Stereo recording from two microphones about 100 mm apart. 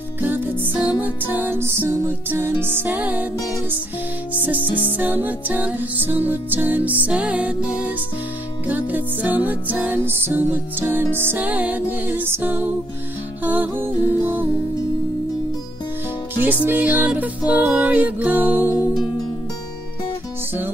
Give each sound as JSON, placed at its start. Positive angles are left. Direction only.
{"t": 0.2, "sound": "music", "side_deg": -20}
{"t": 4.5, "sound": "music", "side_deg": -15}
{"t": 16.6, "sound": "music", "side_deg": -15}